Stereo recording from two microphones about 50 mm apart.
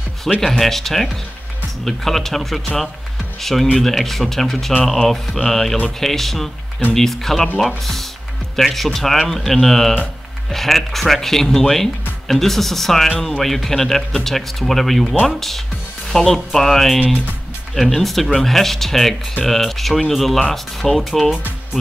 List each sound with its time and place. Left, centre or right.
0.4 s speech: centre